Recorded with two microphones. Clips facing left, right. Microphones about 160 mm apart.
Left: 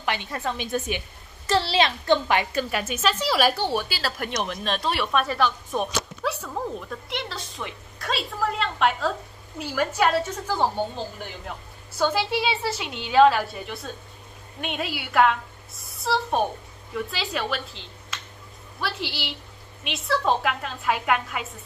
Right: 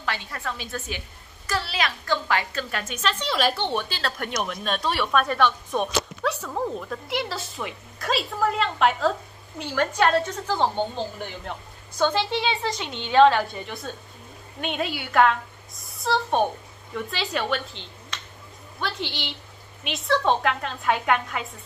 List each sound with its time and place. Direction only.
0.0 s a woman's voice: 20° left (ahead or behind)
12.0 s a woman's voice: 10° left (ahead or behind)